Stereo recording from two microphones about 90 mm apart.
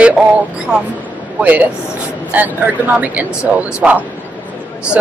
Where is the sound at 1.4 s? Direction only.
20° right (ahead or behind).